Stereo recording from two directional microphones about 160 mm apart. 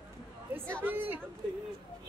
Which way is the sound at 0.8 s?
10° right (ahead or behind).